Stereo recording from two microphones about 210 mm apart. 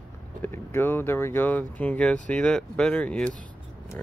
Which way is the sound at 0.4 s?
10° left (ahead or behind).